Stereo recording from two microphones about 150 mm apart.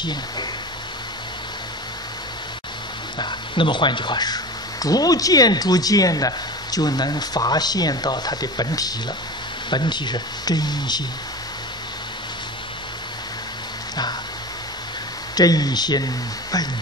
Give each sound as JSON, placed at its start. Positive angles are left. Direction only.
{"t": 0.0, "sound": "speech", "side_deg": 30}
{"t": 3.2, "sound": "speech", "side_deg": 30}
{"t": 15.3, "sound": "speech", "side_deg": 25}